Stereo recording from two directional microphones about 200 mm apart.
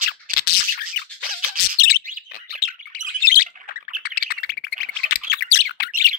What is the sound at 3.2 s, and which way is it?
Squawk, 45° left (ahead or behind).